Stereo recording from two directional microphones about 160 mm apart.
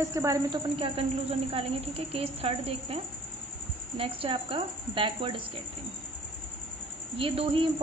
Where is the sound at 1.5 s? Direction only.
35° right (ahead or behind).